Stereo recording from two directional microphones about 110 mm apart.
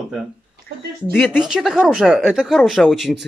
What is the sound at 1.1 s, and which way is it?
Speech, 15° left (ahead or behind).